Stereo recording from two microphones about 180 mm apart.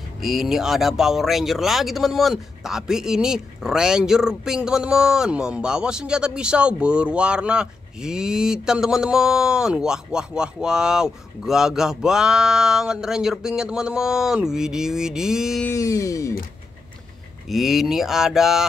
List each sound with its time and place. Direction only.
0.2 s speech: centre (ahead or behind)
15.6 s music: 15° left (ahead or behind)
17.5 s speech: centre (ahead or behind)